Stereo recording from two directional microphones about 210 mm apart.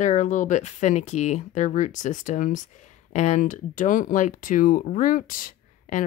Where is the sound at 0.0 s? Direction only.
35° left (ahead or behind).